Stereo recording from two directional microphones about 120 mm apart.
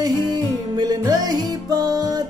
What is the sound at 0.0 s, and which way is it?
Music, 35° right (ahead or behind).